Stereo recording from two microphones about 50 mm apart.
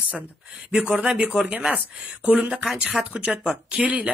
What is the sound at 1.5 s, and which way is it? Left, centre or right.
Speech, right.